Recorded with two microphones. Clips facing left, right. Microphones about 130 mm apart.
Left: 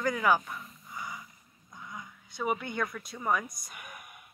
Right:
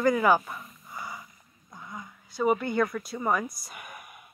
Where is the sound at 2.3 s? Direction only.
Centre (ahead or behind).